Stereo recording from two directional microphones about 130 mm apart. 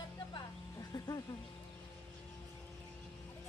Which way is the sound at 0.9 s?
30° left (ahead or behind).